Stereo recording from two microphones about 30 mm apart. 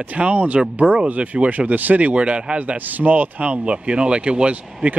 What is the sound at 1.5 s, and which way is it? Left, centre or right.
Speech, right.